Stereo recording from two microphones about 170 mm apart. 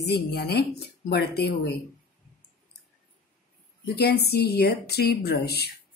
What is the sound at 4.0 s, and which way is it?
Speech, 70° left (ahead or behind).